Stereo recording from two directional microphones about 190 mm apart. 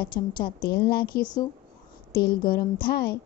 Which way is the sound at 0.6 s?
55° left (ahead or behind).